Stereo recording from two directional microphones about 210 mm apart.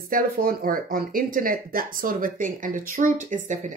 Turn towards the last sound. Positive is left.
turn(degrees=-35)  # may be behind; listen again after turning